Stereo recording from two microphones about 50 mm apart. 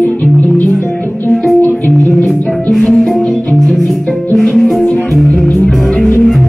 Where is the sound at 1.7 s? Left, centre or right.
Left.